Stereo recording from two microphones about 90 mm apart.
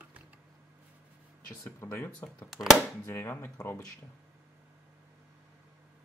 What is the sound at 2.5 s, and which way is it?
Speech, centre (ahead or behind).